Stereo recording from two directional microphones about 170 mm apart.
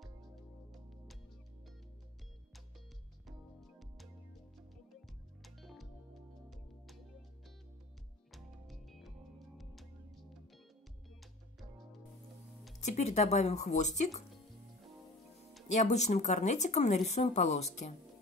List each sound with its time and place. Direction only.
3.3 s music: centre (ahead or behind)
5.4 s music: centre (ahead or behind)
8.3 s music: centre (ahead or behind)
12.8 s speech: 40° left (ahead or behind)
15.7 s speech: 45° left (ahead or behind)